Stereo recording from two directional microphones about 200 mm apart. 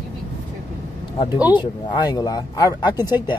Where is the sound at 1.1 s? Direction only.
20° left (ahead or behind).